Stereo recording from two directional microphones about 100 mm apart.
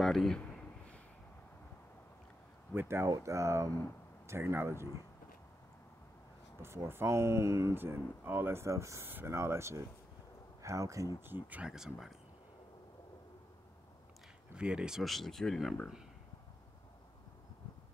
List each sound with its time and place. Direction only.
0.0 s a sound: centre (ahead or behind)
2.7 s speech: 20° right (ahead or behind)
6.6 s speech: 25° right (ahead or behind)
11.1 s speech: 20° right (ahead or behind)
11.6 s speech: 5° right (ahead or behind)
14.5 s speech: 10° right (ahead or behind)